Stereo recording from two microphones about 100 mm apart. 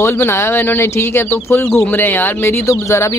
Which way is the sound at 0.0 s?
25° left (ahead or behind).